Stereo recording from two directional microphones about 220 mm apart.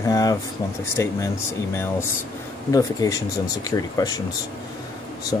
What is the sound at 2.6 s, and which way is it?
Speech, 15° left (ahead or behind).